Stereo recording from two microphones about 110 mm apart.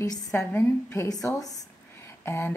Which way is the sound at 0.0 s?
35° left (ahead or behind).